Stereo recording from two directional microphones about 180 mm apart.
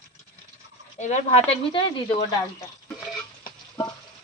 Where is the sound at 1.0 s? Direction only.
35° left (ahead or behind).